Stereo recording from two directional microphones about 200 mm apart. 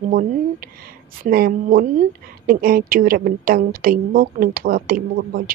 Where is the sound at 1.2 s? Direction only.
45° right (ahead or behind).